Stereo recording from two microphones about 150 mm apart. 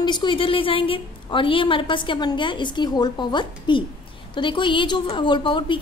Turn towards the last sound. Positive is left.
turn(degrees=35)  # may be behind; listen again after turning